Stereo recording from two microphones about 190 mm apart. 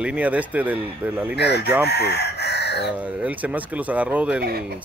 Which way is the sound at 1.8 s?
60° left (ahead or behind).